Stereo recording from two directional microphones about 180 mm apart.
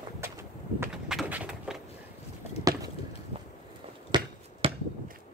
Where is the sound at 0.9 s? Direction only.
5° right (ahead or behind).